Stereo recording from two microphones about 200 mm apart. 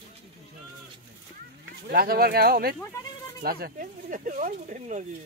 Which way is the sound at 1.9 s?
50° right (ahead or behind).